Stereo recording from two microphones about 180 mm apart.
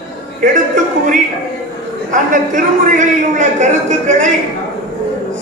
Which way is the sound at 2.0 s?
45° right (ahead or behind).